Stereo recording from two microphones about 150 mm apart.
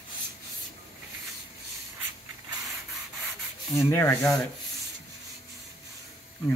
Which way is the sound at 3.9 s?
15° left (ahead or behind).